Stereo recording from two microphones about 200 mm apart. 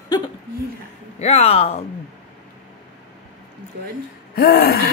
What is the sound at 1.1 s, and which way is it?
Speech, 30° left (ahead or behind).